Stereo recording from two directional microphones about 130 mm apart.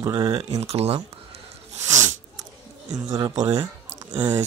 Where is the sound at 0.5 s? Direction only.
55° right (ahead or behind).